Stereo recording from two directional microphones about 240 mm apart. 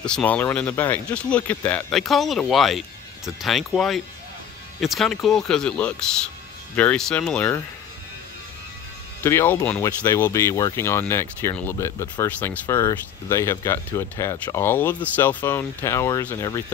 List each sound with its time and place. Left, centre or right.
0.0 s speech: centre
9.2 s speech: centre